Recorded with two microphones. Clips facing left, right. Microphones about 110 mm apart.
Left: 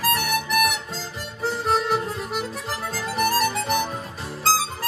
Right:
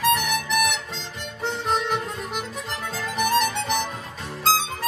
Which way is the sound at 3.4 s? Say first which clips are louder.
Left 1 dB; 5° left (ahead or behind).